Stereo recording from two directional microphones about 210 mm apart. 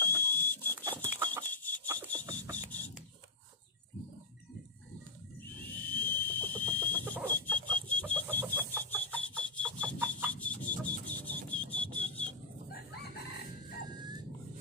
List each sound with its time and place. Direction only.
0.0 s printer: 10° left (ahead or behind)
1.4 s chicken: 10° left (ahead or behind)
2.0 s a sound: 10° left (ahead or behind)
5.4 s a sound: 10° left (ahead or behind)
7.2 s alarm clock: 10° left (ahead or behind)
8.7 s a sound: 10° left (ahead or behind)
9.3 s alarm clock: 5° left (ahead or behind)
10.3 s music: 5° left (ahead or behind)
12.7 s chicken: 50° left (ahead or behind)